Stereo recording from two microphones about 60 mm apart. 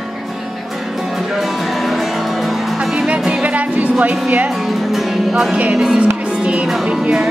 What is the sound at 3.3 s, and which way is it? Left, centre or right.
Music, right.